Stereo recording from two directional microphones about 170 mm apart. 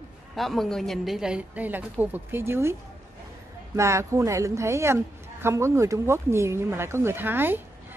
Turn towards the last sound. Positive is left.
turn(degrees=-10)  # may be behind; listen again after turning